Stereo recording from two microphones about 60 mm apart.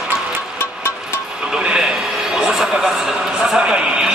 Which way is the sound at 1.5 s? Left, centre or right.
Centre.